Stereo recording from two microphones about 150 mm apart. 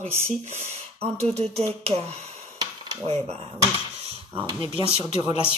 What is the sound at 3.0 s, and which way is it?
Speech, 45° right (ahead or behind).